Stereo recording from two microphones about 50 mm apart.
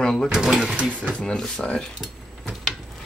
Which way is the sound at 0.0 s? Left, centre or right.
Centre.